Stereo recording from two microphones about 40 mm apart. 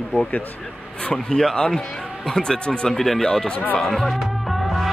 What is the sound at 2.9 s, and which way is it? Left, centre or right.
Speech, centre.